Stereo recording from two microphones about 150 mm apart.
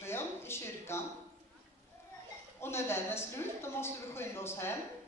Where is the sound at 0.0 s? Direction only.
15° left (ahead or behind).